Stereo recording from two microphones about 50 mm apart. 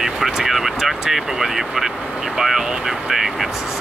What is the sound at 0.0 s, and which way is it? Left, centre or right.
Speech, centre.